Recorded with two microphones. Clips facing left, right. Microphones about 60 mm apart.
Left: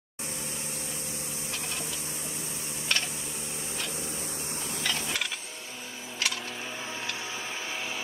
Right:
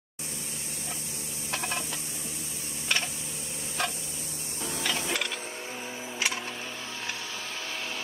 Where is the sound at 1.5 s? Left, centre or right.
Right.